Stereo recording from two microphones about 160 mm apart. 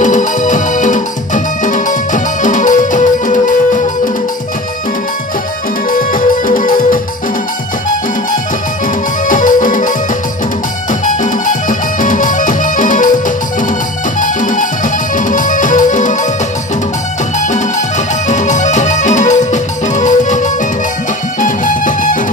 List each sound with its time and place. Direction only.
0.0 s music: 50° left (ahead or behind)
5.9 s music: 55° left (ahead or behind)
9.3 s music: 55° left (ahead or behind)
14.2 s music: 55° left (ahead or behind)
17.4 s music: 50° left (ahead or behind)